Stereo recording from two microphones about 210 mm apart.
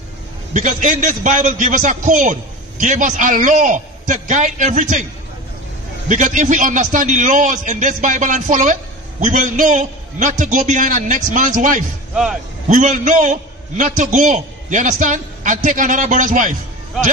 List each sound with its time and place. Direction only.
0.5 s a man's voice: 35° right (ahead or behind)
6.0 s a man's voice: 35° right (ahead or behind)